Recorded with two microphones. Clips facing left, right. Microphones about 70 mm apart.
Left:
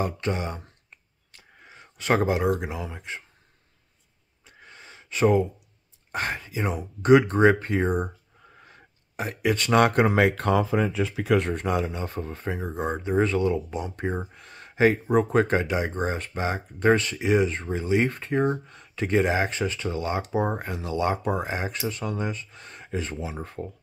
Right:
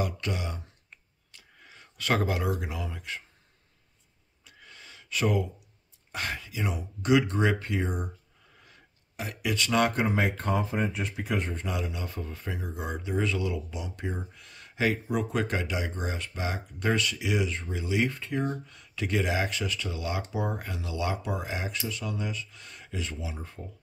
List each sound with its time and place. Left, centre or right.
0.0 s speech: left
1.3 s a sound: left
2.6 s speech: left
4.5 s gasp: left
6.1 s speech: left
11.6 s speech: left